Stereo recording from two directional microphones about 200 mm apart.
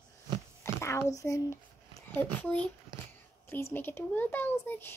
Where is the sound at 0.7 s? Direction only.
15° left (ahead or behind).